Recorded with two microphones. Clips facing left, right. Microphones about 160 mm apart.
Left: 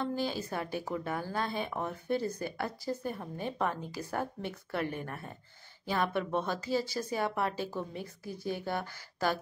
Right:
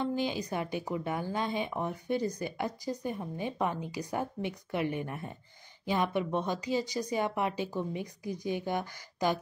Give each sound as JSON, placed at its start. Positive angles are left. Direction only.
{"t": 0.0, "sound": "a woman's voice", "side_deg": -15}